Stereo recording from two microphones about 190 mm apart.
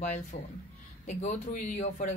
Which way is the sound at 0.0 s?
40° left (ahead or behind).